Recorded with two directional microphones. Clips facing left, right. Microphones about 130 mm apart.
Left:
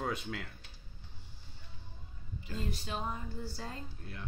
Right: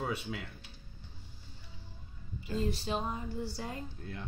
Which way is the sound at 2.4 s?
25° right (ahead or behind).